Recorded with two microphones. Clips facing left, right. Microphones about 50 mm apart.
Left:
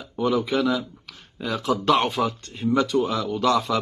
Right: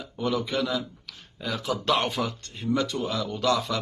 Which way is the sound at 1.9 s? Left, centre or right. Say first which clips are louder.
Left 4 dB; centre.